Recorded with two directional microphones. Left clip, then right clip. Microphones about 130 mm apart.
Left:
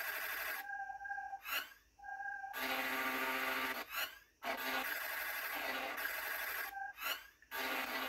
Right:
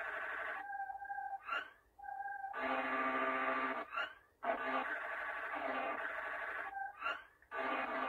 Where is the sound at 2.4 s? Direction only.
20° left (ahead or behind).